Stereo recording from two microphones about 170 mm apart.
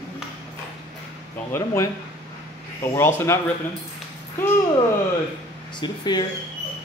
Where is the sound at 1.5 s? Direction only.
15° left (ahead or behind).